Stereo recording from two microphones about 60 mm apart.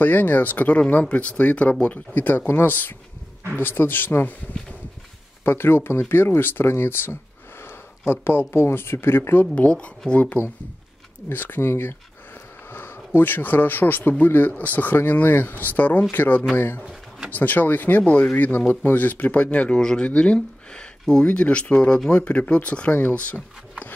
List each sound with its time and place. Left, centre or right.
0.0 s speech: left
2.1 s speech: left
5.4 s speech: left
9.6 s speech: centre
11.2 s speech: left
16.5 s speech: left
17.3 s speech: left